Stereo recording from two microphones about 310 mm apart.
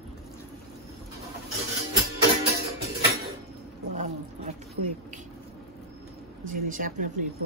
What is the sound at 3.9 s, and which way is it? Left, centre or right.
Speech, right.